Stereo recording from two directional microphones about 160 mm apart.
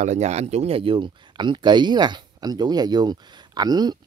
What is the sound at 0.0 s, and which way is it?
Speech, 45° right (ahead or behind).